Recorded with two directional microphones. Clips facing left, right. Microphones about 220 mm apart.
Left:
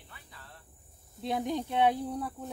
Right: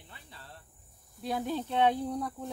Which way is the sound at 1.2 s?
20° left (ahead or behind).